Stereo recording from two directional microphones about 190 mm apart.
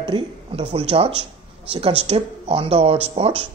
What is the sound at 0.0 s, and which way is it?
Speech, 25° right (ahead or behind).